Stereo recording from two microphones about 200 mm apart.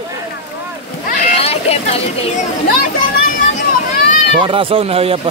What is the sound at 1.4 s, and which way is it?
Speech, 30° left (ahead or behind).